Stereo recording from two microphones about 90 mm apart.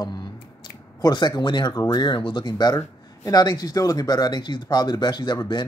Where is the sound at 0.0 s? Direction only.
50° left (ahead or behind).